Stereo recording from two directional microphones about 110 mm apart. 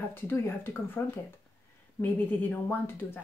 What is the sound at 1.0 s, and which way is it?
Speech, 20° left (ahead or behind).